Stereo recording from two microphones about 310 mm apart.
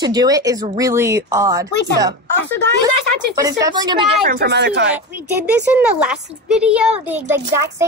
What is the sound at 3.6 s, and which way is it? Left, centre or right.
Speech, centre.